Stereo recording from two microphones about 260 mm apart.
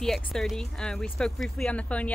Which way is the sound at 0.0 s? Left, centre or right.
Centre.